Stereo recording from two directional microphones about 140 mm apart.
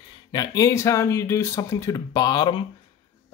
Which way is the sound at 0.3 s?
25° left (ahead or behind).